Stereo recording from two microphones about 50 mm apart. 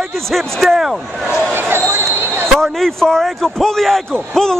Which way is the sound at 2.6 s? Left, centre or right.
Centre.